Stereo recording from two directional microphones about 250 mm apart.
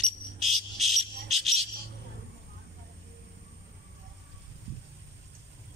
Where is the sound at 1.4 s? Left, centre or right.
Right.